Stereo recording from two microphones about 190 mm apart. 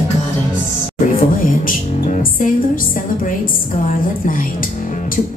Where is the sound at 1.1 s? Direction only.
45° left (ahead or behind).